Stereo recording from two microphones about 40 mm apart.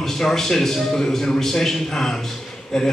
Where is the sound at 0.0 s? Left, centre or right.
Centre.